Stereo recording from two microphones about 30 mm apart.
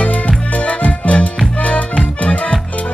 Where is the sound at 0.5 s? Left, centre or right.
Left.